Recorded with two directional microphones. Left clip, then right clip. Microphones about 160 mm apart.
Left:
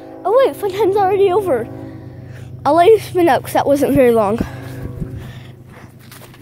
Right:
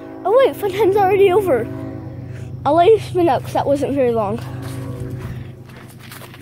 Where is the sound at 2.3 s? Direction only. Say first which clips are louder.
Left 2 dB; 25° left (ahead or behind); by 4.6 s 50° left (ahead or behind).